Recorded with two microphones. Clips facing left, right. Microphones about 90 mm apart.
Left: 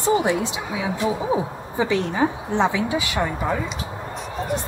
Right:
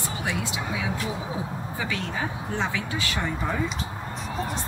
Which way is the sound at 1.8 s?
25° left (ahead or behind).